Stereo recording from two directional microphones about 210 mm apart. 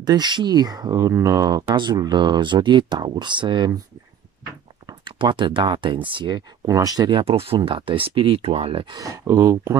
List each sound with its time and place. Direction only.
0.0 s speech: 20° right (ahead or behind)
4.8 s speech: 20° right (ahead or behind)